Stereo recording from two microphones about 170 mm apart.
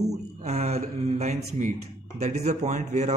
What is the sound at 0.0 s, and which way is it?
Speech, 40° right (ahead or behind).